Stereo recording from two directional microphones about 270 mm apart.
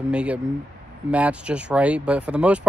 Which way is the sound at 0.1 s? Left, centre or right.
Centre.